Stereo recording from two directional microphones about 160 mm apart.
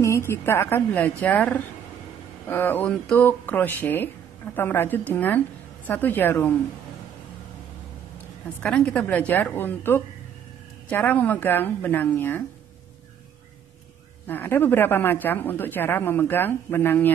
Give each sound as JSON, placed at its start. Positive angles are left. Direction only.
{"t": 0.0, "sound": "a woman's voice", "side_deg": 15}
{"t": 8.5, "sound": "a woman's voice", "side_deg": 5}
{"t": 14.2, "sound": "a woman's voice", "side_deg": 15}